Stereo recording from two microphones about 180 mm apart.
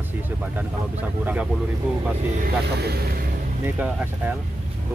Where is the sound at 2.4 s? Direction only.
60° right (ahead or behind).